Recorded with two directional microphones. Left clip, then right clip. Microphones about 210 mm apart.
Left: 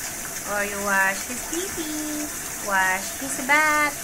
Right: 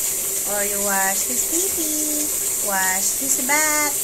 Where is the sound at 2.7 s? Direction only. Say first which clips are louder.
Left 1 dB; 15° right (ahead or behind).